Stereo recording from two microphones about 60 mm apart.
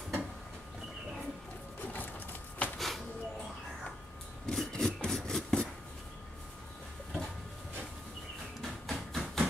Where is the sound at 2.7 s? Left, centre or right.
Centre.